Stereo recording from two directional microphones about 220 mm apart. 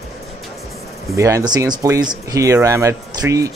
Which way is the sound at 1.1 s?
15° right (ahead or behind).